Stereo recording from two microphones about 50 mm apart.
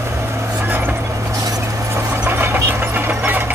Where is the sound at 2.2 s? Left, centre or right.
Right.